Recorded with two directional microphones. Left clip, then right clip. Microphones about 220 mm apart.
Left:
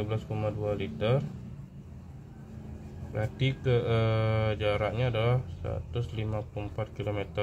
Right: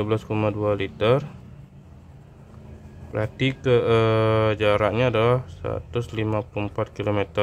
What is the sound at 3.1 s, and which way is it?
Speech, 30° right (ahead or behind).